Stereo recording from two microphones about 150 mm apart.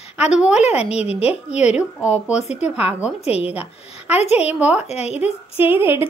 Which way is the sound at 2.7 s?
10° right (ahead or behind).